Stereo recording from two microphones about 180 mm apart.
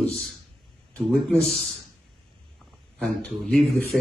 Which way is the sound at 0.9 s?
5° left (ahead or behind).